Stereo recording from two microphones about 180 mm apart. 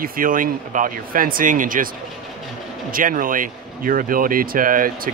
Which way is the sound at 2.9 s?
50° right (ahead or behind).